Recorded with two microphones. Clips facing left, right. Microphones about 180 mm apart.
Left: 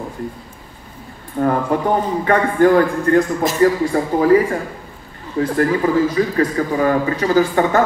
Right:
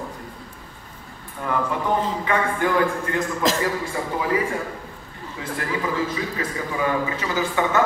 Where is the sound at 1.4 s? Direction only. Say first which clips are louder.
Left 8 dB; 50° left (ahead or behind).